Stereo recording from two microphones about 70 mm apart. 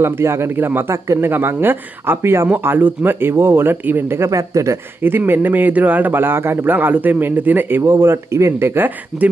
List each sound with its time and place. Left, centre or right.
0.0 s speech: right
0.9 s speech: right
1.3 s speech: right
4.2 s speech: right
5.0 s speech: right